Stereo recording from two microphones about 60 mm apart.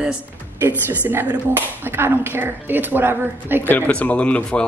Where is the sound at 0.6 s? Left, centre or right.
Right.